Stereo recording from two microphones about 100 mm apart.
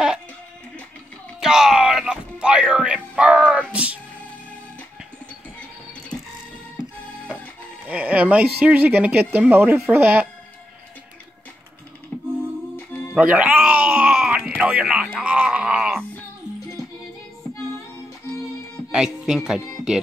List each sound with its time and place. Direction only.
1.4 s music: 5° right (ahead or behind)
7.9 s speech: 15° right (ahead or behind)
12.7 s music: 20° left (ahead or behind)
13.1 s music: 15° right (ahead or behind)
18.9 s speech: 5° right (ahead or behind)